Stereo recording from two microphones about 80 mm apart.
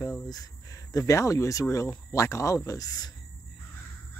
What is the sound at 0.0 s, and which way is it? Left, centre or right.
Speech, left.